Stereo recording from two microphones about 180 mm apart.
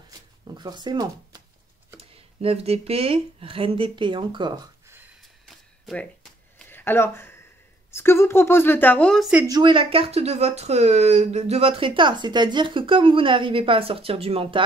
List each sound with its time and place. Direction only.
0.6 s speech: 25° right (ahead or behind)
6.7 s a sound: 10° left (ahead or behind)
7.9 s a woman's voice: 15° left (ahead or behind)
9.5 s speech: 25° right (ahead or behind)